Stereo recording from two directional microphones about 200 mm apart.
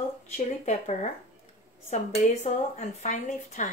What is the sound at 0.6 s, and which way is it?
Speech, 35° left (ahead or behind).